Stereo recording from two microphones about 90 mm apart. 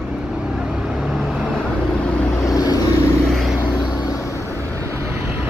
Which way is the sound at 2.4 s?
40° left (ahead or behind).